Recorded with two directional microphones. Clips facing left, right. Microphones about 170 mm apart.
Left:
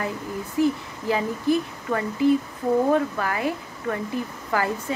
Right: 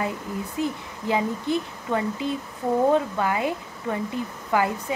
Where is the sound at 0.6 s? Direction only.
20° right (ahead or behind).